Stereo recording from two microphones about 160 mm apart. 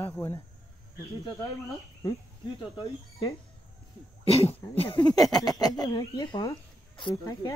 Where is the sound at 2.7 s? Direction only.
35° left (ahead or behind).